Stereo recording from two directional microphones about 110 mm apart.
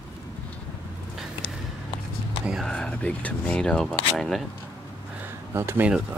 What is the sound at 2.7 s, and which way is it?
Speech, 10° left (ahead or behind).